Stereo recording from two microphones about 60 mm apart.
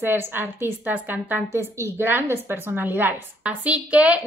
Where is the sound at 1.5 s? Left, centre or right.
Right.